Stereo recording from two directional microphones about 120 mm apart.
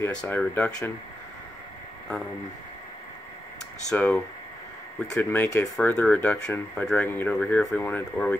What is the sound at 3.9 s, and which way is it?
Speech, 10° left (ahead or behind).